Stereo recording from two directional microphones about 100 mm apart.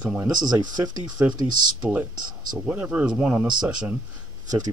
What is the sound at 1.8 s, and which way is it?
Speech, 15° right (ahead or behind).